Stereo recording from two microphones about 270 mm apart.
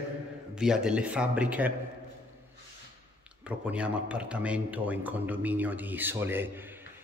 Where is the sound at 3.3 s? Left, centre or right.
Centre.